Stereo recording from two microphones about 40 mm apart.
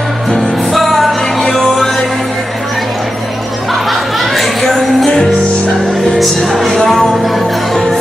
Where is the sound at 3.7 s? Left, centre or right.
Centre.